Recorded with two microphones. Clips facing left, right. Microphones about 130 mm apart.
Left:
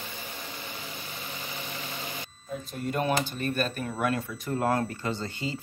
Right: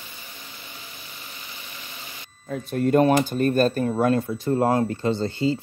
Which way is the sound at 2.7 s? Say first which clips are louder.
Right 14 dB; 55° right (ahead or behind).